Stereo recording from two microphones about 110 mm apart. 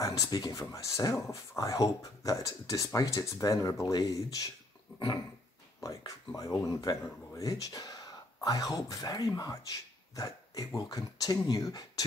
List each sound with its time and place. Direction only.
0.0 s speech: 35° left (ahead or behind)
4.9 s dog: 45° left (ahead or behind)
5.8 s speech: 35° left (ahead or behind)